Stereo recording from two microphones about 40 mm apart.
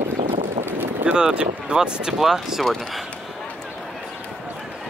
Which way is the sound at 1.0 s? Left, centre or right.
Right.